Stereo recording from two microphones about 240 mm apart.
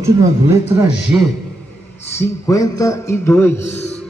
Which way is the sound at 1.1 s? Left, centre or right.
Centre.